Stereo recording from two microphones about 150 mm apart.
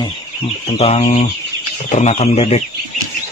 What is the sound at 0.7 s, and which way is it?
Speech, 45° left (ahead or behind).